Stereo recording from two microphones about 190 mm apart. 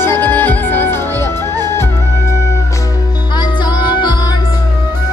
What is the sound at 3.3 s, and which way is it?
Music, 25° left (ahead or behind).